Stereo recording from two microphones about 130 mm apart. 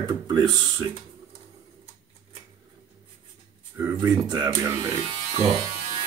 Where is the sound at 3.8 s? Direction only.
20° right (ahead or behind).